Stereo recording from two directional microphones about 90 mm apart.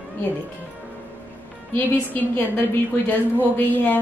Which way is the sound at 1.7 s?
20° left (ahead or behind).